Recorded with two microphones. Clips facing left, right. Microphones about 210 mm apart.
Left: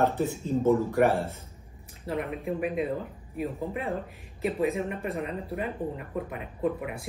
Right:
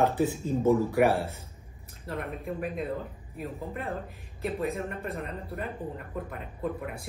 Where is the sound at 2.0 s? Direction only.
Centre (ahead or behind).